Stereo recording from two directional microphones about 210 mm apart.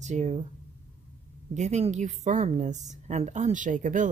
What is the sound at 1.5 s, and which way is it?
Speech, 35° right (ahead or behind).